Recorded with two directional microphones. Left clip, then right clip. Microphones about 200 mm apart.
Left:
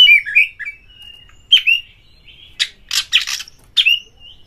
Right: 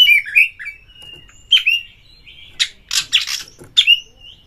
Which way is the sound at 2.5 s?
10° right (ahead or behind).